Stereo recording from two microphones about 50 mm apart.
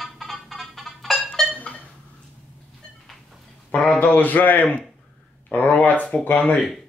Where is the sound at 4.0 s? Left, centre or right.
Left.